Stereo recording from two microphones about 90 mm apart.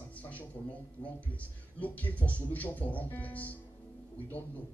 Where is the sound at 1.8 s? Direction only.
20° left (ahead or behind).